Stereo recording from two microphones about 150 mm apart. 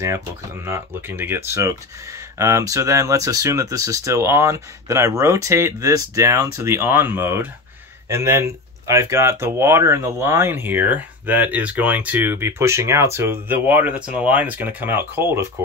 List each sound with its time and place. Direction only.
0.7 s speech: 15° right (ahead or behind)